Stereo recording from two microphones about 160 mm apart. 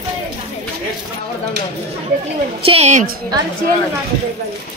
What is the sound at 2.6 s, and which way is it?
Speech, 40° right (ahead or behind).